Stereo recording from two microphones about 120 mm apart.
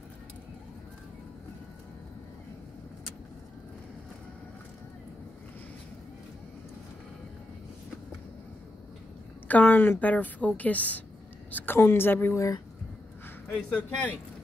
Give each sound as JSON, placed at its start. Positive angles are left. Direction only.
{"t": 9.5, "sound": "a woman's voice", "side_deg": 15}
{"t": 13.5, "sound": "a woman's voice", "side_deg": 10}